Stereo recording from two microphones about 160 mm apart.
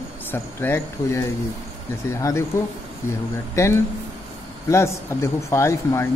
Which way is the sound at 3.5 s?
15° left (ahead or behind).